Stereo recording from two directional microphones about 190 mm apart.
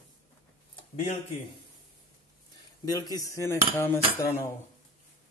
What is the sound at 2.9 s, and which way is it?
Cutlery, 20° left (ahead or behind).